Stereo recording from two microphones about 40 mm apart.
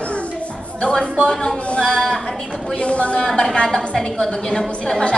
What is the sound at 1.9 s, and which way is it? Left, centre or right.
Speech, centre.